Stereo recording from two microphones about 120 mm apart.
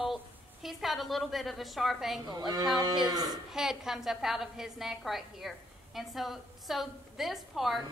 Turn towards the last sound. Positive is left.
turn(degrees=0)  # may be behind; listen again after turning